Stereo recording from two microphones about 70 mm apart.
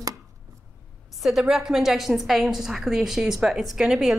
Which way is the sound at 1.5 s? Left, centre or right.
Centre.